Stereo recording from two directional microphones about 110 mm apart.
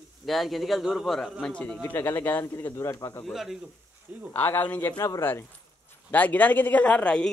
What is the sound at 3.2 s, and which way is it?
Speech, 5° right (ahead or behind).